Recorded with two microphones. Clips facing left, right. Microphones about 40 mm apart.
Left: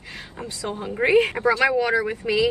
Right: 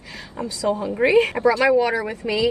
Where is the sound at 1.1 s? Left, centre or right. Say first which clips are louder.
Right 1 dB; left.